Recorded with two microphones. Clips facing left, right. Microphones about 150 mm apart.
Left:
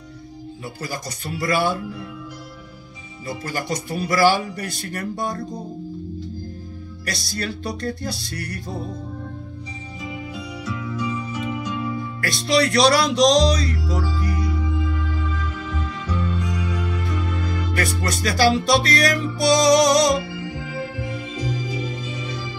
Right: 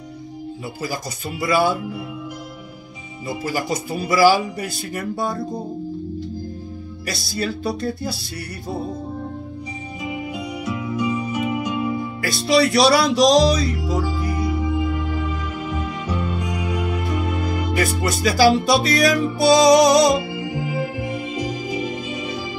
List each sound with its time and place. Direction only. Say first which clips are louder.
1.4 s speech: right 3 dB; 5° right (ahead or behind)
3.3 s speech: right 3 dB; 10° right (ahead or behind)
5.4 s speech: right 4 dB; 25° right (ahead or behind)
7.1 s music: right 3 dB; 5° right (ahead or behind)
10.0 s music: right 4 dB; 15° right (ahead or behind)
12.3 s music: right 2 dB; 5° right (ahead or behind)
13.7 s music: right 3 dB; 15° right (ahead or behind)